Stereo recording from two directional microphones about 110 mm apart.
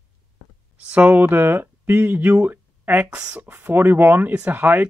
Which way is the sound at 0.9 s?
15° right (ahead or behind).